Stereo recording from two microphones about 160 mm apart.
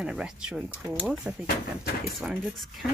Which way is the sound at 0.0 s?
5° right (ahead or behind).